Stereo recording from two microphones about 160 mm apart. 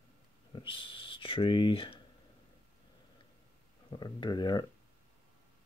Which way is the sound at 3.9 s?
30° left (ahead or behind).